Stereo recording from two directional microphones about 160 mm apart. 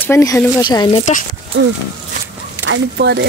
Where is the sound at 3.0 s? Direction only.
90° right.